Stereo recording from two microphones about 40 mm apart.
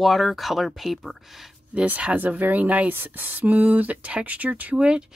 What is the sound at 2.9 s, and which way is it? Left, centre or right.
Speech, right.